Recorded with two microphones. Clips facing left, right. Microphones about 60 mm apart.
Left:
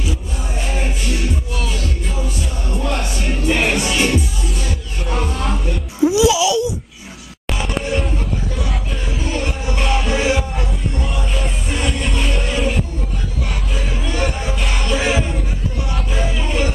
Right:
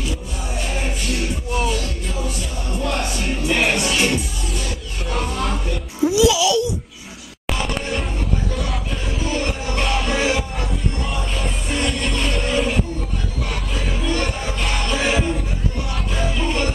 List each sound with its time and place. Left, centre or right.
2.7 s music: centre
6.0 s a sound: centre
7.4 s music: centre